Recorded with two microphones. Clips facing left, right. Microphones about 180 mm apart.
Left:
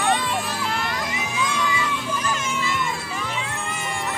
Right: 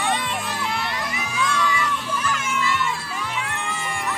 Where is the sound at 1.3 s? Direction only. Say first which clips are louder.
Right 2 dB; 15° left (ahead or behind).